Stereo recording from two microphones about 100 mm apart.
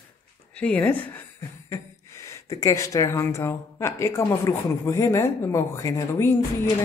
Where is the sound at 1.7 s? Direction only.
30° left (ahead or behind).